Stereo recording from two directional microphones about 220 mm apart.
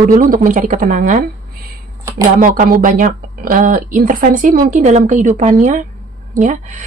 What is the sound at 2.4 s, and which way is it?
A woman's voice, 40° right (ahead or behind).